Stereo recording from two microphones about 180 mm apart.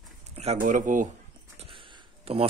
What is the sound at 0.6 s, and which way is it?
Speech, 45° right (ahead or behind).